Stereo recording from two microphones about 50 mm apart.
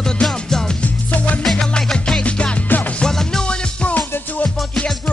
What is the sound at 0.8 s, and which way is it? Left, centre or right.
Music, left.